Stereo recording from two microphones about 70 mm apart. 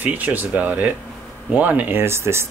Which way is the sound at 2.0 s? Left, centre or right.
Right.